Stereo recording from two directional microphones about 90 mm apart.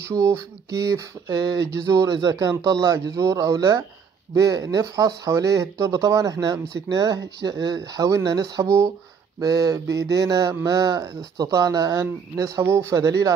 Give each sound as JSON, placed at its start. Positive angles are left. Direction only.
{"t": 0.0, "sound": "speech", "side_deg": -35}
{"t": 9.4, "sound": "speech", "side_deg": -45}